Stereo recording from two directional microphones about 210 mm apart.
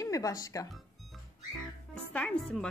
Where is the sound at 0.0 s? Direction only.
15° left (ahead or behind).